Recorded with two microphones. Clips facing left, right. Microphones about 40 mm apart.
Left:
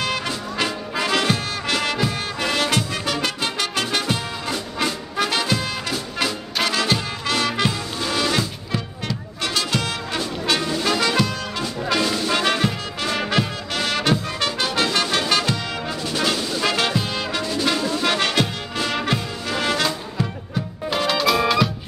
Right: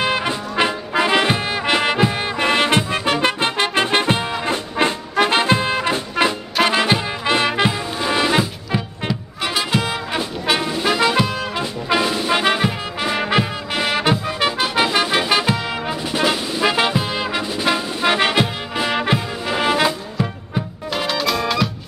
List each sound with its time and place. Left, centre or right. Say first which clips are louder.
0.0 s music: right 5 dB; right
21.1 s music: left 2 dB; centre